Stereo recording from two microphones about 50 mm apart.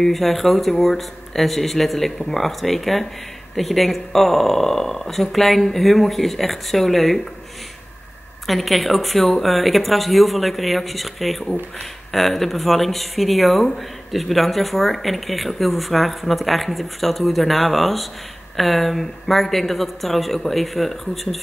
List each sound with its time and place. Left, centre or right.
0.0 s speech: centre
8.5 s speech: centre